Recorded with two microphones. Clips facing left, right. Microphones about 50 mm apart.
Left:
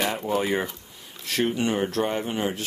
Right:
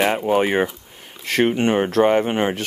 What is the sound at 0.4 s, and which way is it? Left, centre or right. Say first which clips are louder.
Speech: right 7 dB; right.